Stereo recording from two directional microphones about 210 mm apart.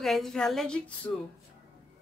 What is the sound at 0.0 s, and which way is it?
A woman's voice, centre (ahead or behind).